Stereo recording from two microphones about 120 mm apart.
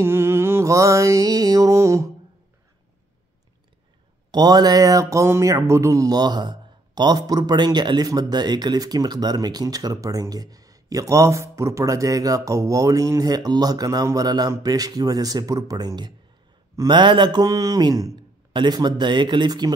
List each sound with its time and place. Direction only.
0.0 s mantra: 20° right (ahead or behind)
4.3 s speech: 35° right (ahead or behind)